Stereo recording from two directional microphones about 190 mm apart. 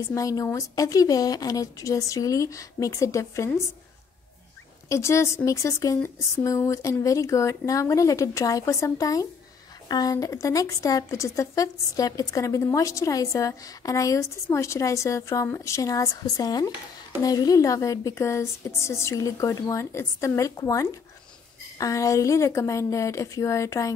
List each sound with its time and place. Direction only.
0.1 s speech: 15° left (ahead or behind)
4.8 s speech: 15° left (ahead or behind)